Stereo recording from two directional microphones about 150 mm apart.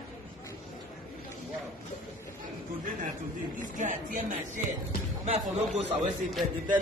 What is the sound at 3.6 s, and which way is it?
Speech, 60° right (ahead or behind).